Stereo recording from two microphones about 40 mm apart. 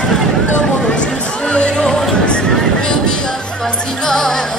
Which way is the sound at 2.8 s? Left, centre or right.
Left.